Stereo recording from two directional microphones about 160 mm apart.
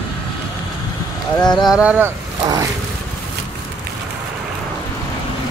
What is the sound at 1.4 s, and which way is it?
Speech, centre (ahead or behind).